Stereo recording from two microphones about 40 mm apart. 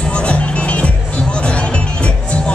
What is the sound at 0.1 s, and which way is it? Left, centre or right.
Music, left.